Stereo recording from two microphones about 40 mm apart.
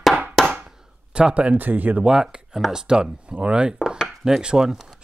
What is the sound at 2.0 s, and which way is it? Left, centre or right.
Speech, centre.